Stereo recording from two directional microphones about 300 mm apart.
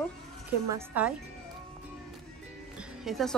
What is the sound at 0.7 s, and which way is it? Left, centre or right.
Speech, centre.